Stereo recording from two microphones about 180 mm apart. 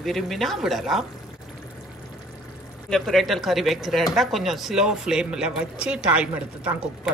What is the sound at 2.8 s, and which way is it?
Speech, centre (ahead or behind).